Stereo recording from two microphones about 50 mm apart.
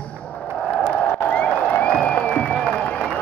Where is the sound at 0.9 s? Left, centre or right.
Left.